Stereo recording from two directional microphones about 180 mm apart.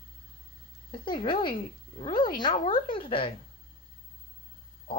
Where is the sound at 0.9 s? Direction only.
25° left (ahead or behind).